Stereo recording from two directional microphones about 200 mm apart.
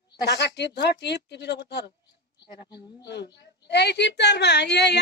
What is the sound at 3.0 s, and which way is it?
A woman's voice, 60° left (ahead or behind).